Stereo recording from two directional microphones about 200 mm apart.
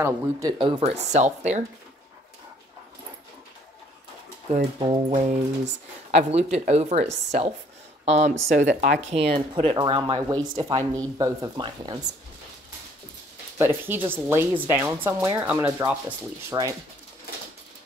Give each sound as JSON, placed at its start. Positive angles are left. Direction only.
{"t": 0.0, "sound": "speech", "side_deg": -15}
{"t": 4.5, "sound": "speech", "side_deg": -30}
{"t": 13.6, "sound": "speech", "side_deg": -10}